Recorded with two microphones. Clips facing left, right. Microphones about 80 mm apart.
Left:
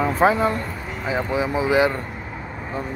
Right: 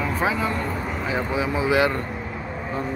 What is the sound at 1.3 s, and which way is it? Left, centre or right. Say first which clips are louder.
Speech: left 2 dB; left.